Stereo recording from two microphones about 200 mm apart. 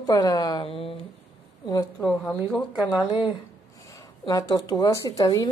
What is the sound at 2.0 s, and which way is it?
Speech, centre (ahead or behind).